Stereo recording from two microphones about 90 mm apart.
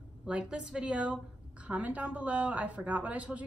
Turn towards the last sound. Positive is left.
turn(degrees=-15)  # may be behind; listen again after turning